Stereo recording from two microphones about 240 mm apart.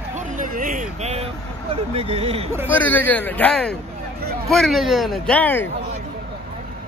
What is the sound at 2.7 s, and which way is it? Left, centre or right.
Speech, centre.